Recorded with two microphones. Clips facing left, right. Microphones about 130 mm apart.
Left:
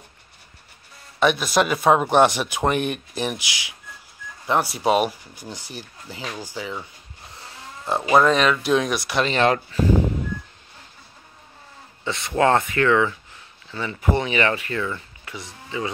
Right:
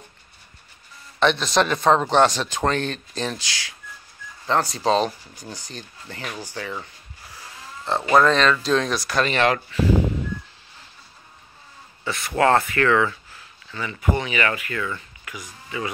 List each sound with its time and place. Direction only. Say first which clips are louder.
1.2 s speech: even; 10° left (ahead or behind)
7.2 s livestock: even; 25° left (ahead or behind)
7.8 s speech: even; 10° left (ahead or behind); by 9.8 s 35° left (ahead or behind)
12.0 s speech: even; 25° left (ahead or behind)